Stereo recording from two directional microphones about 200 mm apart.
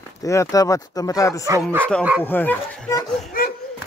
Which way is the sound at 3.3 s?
45° left (ahead or behind).